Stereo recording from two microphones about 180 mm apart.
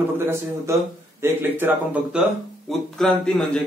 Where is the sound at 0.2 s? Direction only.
15° right (ahead or behind).